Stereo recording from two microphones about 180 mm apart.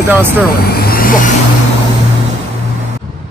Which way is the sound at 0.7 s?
55° left (ahead or behind).